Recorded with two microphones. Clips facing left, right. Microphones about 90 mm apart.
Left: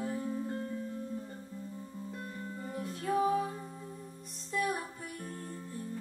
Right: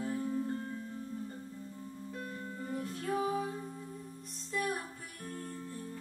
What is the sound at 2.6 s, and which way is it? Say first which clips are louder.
Music: left 1 dB; 5° left (ahead or behind).